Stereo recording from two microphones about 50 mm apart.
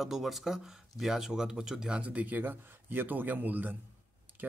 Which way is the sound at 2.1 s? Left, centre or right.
Right.